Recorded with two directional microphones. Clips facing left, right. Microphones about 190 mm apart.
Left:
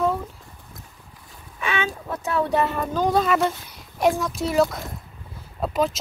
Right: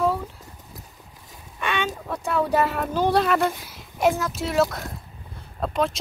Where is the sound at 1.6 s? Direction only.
Centre (ahead or behind).